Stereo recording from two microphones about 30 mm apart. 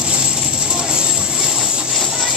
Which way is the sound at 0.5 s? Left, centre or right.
Right.